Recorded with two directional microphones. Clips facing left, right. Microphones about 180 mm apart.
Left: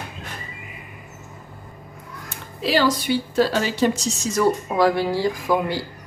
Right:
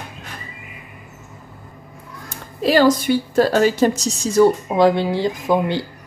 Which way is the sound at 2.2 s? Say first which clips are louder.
Right 6 dB; 45° right (ahead or behind).